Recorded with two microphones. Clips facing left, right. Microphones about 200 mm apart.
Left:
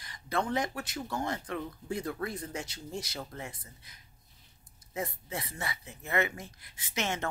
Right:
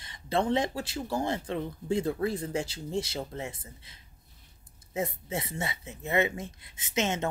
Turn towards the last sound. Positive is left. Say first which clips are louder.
# right 5 dB
turn(degrees=-20)  # may be behind; listen again after turning